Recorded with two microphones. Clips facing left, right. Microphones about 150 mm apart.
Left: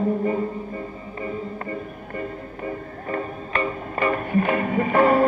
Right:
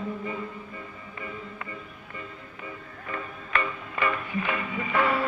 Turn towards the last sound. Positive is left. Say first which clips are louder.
# left 8 dB
turn(degrees=45)  # may be behind; listen again after turning